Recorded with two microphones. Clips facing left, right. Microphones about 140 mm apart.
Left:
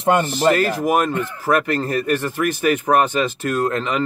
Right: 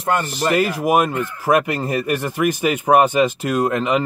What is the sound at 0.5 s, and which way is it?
Speech, 15° right (ahead or behind).